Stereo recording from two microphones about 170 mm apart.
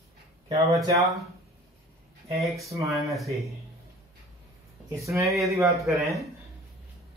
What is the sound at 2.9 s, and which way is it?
Speech, centre (ahead or behind).